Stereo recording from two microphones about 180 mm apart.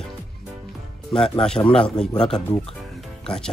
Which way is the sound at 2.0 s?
5° left (ahead or behind).